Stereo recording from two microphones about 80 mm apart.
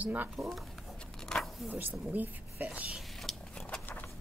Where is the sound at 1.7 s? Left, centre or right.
Right.